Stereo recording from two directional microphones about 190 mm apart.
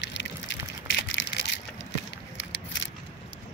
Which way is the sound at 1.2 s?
80° left.